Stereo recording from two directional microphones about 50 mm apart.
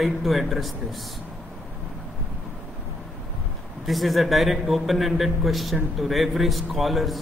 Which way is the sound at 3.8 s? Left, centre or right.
Centre.